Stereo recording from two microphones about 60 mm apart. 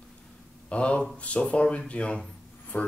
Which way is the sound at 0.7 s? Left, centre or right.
Left.